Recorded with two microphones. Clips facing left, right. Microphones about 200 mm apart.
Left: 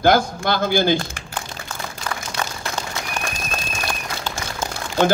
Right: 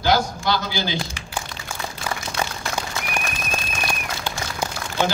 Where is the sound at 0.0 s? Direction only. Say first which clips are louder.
Left 4 dB; 55° left (ahead or behind).